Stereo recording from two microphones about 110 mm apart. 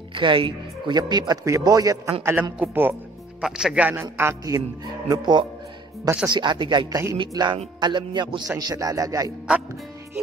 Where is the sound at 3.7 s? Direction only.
15° right (ahead or behind).